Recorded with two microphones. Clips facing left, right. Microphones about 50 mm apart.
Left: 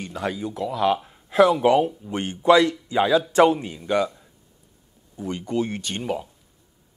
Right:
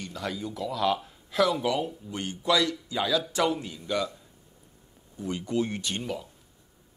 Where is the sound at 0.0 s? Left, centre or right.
Left.